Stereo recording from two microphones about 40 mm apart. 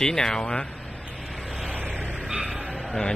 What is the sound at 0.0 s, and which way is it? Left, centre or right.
Speech, centre.